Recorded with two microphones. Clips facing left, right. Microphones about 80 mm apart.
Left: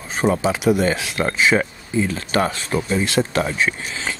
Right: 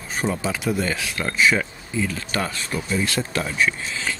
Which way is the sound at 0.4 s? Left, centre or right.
Left.